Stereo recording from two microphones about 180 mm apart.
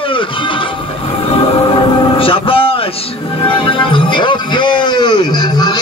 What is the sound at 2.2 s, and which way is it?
Vehicle, 30° left (ahead or behind).